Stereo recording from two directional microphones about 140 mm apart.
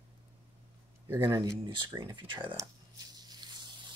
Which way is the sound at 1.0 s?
15° right (ahead or behind).